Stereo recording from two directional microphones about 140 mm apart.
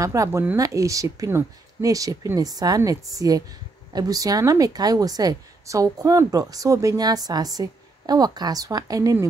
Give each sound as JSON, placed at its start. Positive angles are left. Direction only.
{"t": 0.0, "sound": "a woman's voice", "side_deg": -25}